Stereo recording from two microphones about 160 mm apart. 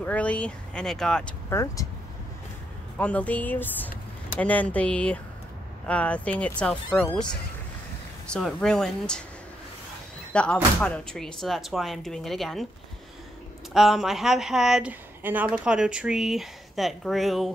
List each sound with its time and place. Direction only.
0.0 s speech: 10° left (ahead or behind)
1.5 s speech: 20° left (ahead or behind)
3.0 s speech: 10° left (ahead or behind)
8.3 s speech: 5° left (ahead or behind)
10.3 s speech: 5° left (ahead or behind)
13.7 s speech: centre (ahead or behind)